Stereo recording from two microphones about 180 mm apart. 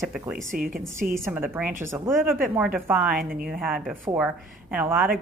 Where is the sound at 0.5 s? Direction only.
55° right (ahead or behind).